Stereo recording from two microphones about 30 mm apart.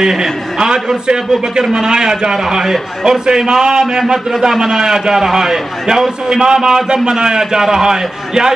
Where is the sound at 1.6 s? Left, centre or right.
Centre.